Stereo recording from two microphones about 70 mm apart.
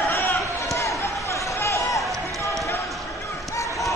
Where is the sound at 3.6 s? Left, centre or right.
Left.